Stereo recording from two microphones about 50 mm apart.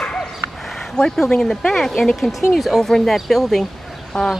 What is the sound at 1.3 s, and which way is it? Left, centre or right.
Speech, centre.